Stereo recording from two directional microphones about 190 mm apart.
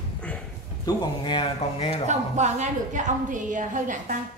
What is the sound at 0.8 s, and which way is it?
Speech, 25° left (ahead or behind).